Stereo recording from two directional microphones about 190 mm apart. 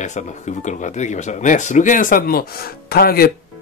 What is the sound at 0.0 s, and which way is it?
Speech, 40° left (ahead or behind).